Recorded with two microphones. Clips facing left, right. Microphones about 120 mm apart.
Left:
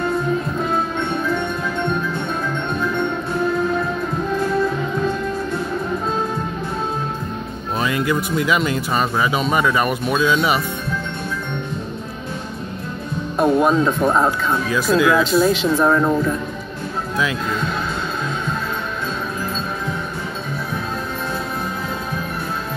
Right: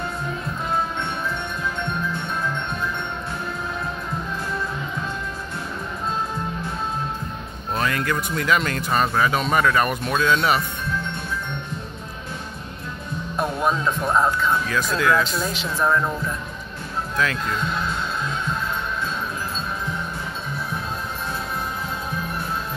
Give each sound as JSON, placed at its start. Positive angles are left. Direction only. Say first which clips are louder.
{"t": 7.7, "sound": "speech", "louder": "left 3 dB", "side_deg": 10}
{"t": 13.4, "sound": "speech", "louder": "left 8 dB", "side_deg": 20}
{"t": 14.8, "sound": "speech", "louder": "left 7 dB", "side_deg": 10}